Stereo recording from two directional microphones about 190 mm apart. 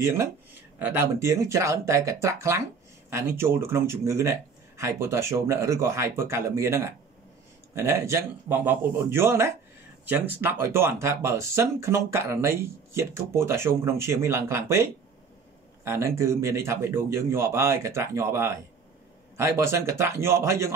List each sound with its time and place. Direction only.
0.0 s speech: 15° right (ahead or behind)